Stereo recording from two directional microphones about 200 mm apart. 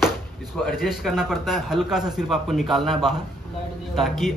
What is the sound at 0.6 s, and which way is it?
A man's voice, centre (ahead or behind).